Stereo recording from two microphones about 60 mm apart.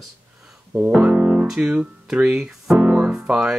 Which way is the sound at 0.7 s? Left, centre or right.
Right.